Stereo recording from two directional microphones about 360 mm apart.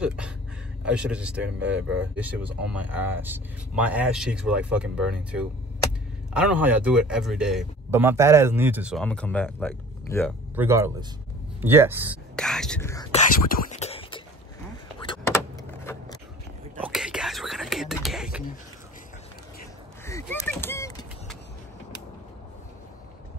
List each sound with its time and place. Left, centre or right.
0.0 s speech: centre
10.5 s speech: centre
13.5 s a sound: centre
15.0 s vehicle: centre
16.7 s whispering: centre
20.1 s duck: centre